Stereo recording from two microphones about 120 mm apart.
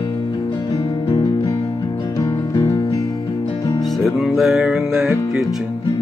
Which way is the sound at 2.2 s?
35° left (ahead or behind).